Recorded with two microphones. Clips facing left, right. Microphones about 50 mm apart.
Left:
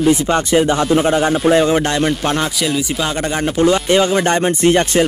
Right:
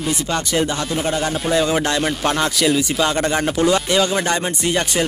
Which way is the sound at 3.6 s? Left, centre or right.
Left.